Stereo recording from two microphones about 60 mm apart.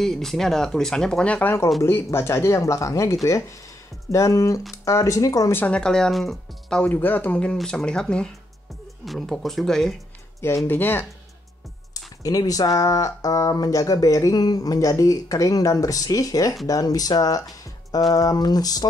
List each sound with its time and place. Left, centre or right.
0.0 s speech: centre
1.8 s speech: left
5.7 s speech: centre
6.9 s speech: left
7.5 s speech: centre
9.0 s speech: centre
10.4 s speech: left
10.7 s speech: left
11.9 s speech: left
16.6 s speech: left